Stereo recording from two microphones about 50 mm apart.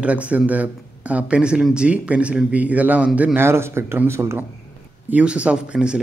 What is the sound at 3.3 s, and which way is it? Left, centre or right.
A man's voice, right.